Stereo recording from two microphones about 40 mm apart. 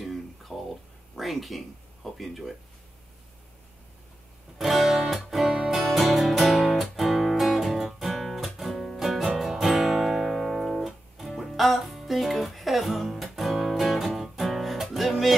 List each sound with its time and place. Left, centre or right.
0.0 s a sound: centre
1.1 s speech: centre
4.6 s music: centre
5.5 s music: centre
5.8 s music: centre
9.4 s guitar: centre